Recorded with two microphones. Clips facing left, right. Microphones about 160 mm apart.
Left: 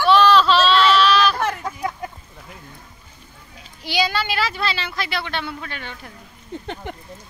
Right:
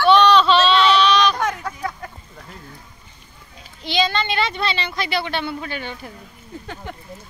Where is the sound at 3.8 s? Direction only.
10° left (ahead or behind).